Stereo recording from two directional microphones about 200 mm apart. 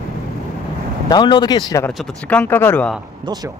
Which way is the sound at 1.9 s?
5° left (ahead or behind).